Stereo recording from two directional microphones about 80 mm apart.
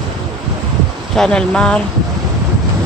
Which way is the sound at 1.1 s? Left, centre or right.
Centre.